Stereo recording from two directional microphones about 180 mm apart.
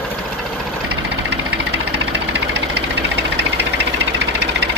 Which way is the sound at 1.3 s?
70° right (ahead or behind).